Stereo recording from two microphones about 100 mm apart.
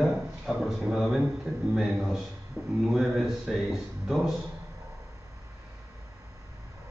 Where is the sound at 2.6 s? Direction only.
20° right (ahead or behind).